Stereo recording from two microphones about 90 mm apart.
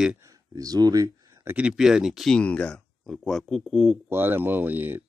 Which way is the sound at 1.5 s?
10° right (ahead or behind).